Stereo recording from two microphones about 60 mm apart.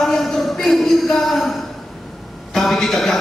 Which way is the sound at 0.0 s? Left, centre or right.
Centre.